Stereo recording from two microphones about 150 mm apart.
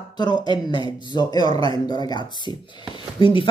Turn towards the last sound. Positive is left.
turn(degrees=35)  # may be behind; listen again after turning